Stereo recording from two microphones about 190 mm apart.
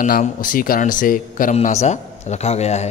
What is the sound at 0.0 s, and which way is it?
A man's voice, 45° left (ahead or behind).